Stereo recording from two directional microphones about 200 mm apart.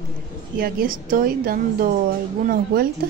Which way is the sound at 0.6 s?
45° right (ahead or behind).